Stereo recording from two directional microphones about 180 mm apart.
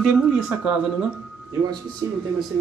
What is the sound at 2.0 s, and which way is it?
Speech, 20° right (ahead or behind).